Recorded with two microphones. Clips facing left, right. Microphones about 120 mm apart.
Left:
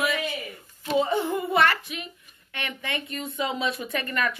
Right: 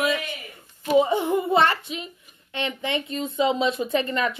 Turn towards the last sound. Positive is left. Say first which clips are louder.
# right 4 dB
turn(degrees=-25)  # may be behind; listen again after turning